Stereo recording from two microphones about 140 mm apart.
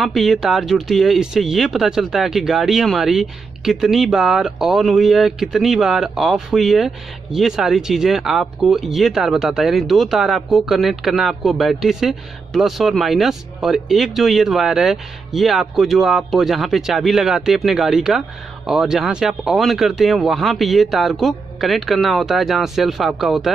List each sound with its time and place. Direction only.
0.0 s speech: centre (ahead or behind)